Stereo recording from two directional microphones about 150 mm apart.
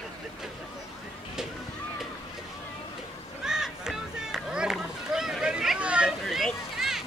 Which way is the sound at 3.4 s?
5° right (ahead or behind).